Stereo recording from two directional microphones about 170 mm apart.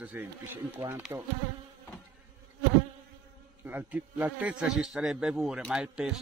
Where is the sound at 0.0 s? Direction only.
10° right (ahead or behind).